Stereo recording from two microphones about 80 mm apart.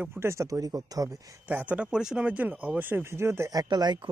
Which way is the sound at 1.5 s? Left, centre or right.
Right.